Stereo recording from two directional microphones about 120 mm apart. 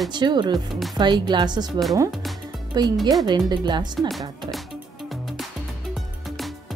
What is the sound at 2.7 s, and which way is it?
Speech, 35° right (ahead or behind).